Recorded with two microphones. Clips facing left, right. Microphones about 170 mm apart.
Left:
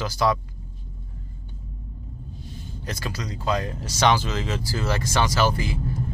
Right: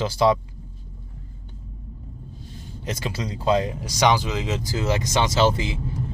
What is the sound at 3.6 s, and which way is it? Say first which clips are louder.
Speech: right 1 dB; 15° right (ahead or behind).